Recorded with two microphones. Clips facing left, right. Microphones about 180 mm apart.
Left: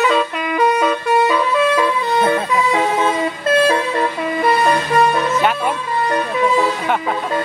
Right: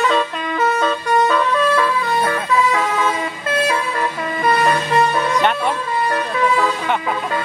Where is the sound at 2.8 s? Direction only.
25° left (ahead or behind).